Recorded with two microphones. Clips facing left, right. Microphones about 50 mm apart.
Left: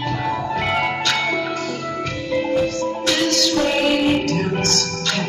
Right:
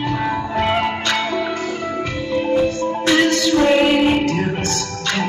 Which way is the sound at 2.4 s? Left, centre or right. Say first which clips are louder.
Right 3 dB; right.